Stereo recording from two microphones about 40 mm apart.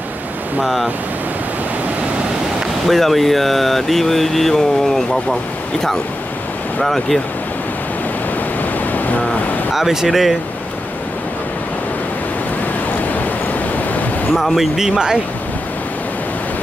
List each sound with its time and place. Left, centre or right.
2.9 s speech: centre
6.8 s speech: centre
9.8 s speech: centre
14.4 s speech: centre
14.8 s speech: centre